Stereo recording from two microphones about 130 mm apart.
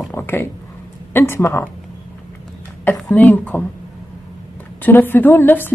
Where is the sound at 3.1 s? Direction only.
10° left (ahead or behind).